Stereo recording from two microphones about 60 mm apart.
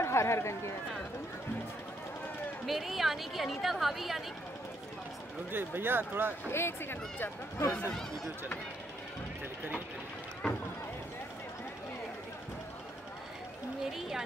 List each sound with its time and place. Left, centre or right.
0.0 s speech: left
2.6 s a woman's voice: centre
5.5 s speech: right
6.5 s speech: left
13.8 s a woman's voice: centre